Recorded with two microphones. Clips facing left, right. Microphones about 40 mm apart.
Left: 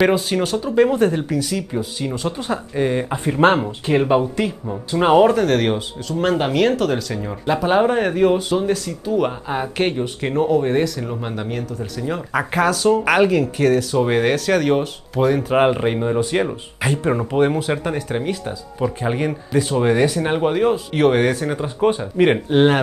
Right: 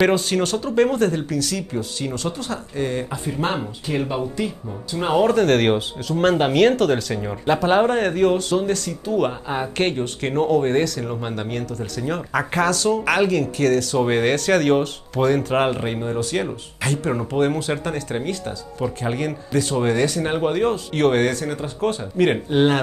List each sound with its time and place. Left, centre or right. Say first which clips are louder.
0.0 s speech: left 1 dB; centre
3.3 s speech: left 10 dB; left
3.8 s speech: left 8 dB; left
5.2 s speech: left 1 dB; centre
12.1 s speech: left 1 dB; centre